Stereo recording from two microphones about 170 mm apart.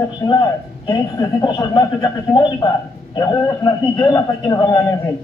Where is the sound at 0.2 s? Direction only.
20° left (ahead or behind).